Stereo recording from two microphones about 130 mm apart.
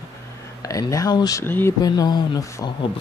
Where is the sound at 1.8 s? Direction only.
30° left (ahead or behind).